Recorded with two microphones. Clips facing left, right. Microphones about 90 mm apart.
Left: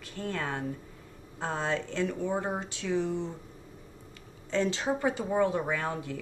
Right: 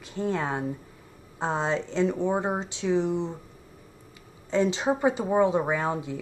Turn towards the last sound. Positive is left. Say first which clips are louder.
# right 5 dB
turn(degrees=-20)  # may be behind; listen again after turning